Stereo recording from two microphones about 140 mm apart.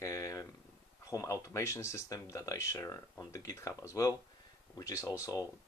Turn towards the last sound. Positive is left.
turn(degrees=25)  # may be behind; listen again after turning